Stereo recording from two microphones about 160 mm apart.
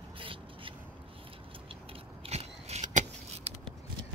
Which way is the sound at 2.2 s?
40° right (ahead or behind).